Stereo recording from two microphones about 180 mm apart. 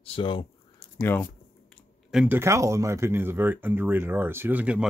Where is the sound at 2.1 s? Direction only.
5° right (ahead or behind).